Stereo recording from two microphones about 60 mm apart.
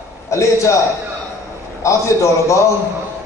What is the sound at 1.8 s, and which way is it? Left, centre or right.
Speech, left.